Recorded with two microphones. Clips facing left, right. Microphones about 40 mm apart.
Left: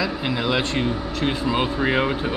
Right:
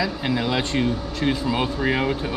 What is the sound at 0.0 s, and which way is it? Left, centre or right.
Speech, centre.